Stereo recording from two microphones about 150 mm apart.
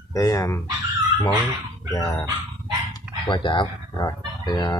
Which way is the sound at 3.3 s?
30° left (ahead or behind).